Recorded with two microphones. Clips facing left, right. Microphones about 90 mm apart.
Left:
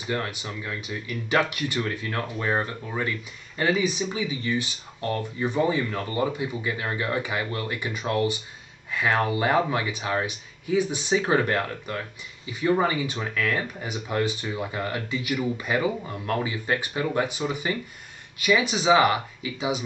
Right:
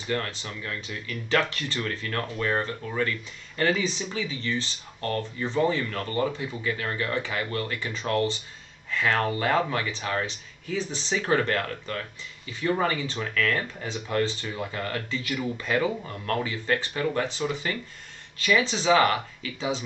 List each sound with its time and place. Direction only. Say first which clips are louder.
0.0 s speech: left 1 dB; 15° left (ahead or behind)